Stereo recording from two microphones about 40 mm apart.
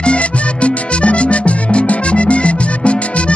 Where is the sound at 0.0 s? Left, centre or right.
Left.